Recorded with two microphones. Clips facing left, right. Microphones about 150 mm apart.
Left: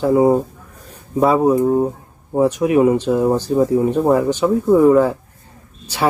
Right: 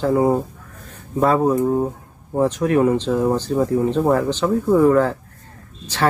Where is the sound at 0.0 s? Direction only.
10° left (ahead or behind).